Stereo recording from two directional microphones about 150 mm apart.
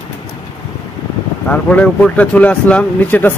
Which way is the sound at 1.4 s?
10° left (ahead or behind).